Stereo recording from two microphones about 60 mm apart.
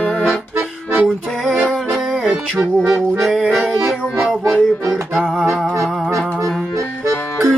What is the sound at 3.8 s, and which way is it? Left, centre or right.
Music, centre.